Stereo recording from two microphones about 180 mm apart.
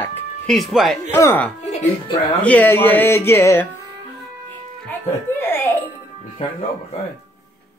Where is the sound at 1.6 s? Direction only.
40° left (ahead or behind).